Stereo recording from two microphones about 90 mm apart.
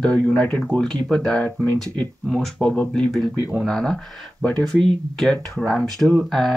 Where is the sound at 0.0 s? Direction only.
15° left (ahead or behind).